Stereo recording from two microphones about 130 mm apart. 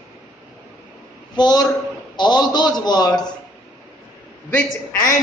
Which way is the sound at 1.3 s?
30° left (ahead or behind).